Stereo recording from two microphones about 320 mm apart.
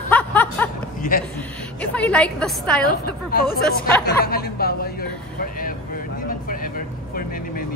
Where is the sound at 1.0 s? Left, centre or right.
Left.